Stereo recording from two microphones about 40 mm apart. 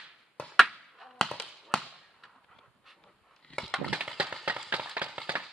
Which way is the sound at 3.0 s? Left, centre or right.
Centre.